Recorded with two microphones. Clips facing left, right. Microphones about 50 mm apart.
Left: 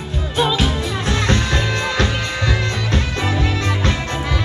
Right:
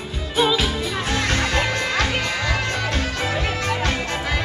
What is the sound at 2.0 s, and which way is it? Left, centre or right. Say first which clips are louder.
Music: left 2 dB; left.